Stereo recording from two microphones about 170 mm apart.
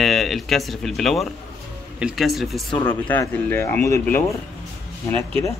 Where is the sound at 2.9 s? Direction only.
10° left (ahead or behind).